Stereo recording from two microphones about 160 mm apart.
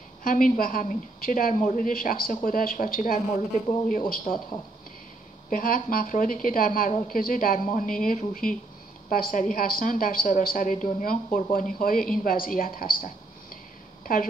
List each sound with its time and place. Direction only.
0.2 s a woman's voice: 60° left (ahead or behind)
5.5 s a woman's voice: 65° left (ahead or behind)